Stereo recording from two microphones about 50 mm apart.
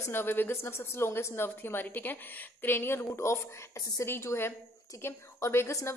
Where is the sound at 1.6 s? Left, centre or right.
Left.